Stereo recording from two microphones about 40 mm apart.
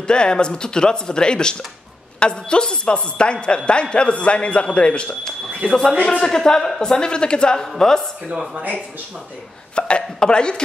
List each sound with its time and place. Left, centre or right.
0.0 s a woman's voice: left
5.7 s a woman's voice: centre
7.6 s speech: centre
9.8 s hiccup: left